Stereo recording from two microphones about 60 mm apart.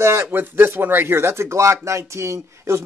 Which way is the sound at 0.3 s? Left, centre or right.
Right.